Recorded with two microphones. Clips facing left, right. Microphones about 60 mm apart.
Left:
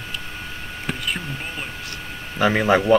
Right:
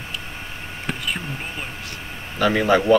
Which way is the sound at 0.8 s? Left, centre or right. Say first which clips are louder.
Even; centre.